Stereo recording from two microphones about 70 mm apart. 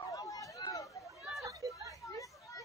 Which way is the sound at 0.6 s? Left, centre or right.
Left.